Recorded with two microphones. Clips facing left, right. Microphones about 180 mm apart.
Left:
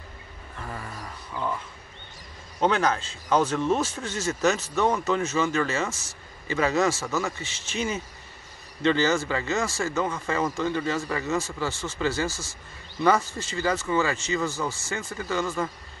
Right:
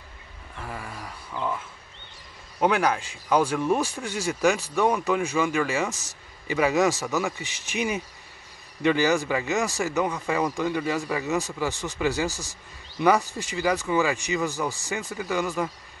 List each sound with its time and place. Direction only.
0.6 s dog: 5° right (ahead or behind)
2.6 s speech: 10° right (ahead or behind)